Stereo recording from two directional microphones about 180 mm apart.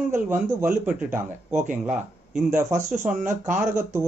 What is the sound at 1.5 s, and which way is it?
Speech, 45° right (ahead or behind).